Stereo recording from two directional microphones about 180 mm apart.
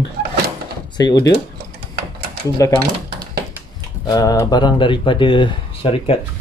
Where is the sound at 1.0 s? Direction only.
20° left (ahead or behind).